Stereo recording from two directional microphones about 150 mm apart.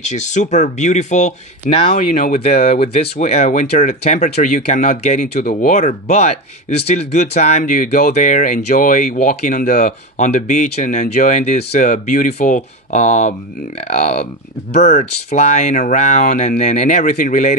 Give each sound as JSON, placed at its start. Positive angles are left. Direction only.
{"t": 0.0, "sound": "speech", "side_deg": 50}
{"t": 2.1, "sound": "speech", "side_deg": 70}
{"t": 2.4, "sound": "speech", "side_deg": 45}